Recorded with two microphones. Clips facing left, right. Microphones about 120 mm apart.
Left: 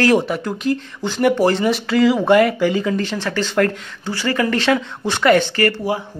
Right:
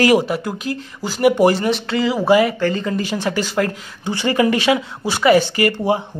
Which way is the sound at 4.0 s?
20° right (ahead or behind).